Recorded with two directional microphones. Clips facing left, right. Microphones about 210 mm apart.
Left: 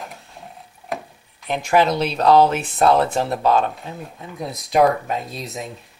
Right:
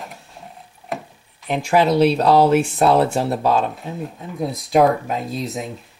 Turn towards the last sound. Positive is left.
turn(degrees=0)  # may be behind; listen again after turning